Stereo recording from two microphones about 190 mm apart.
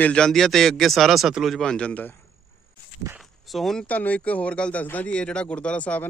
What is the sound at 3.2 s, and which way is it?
Speech, centre (ahead or behind).